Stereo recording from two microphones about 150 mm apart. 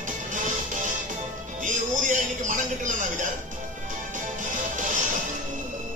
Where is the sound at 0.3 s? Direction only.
55° right (ahead or behind).